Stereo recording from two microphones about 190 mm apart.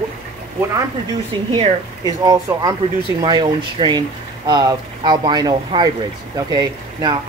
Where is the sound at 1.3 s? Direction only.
25° right (ahead or behind).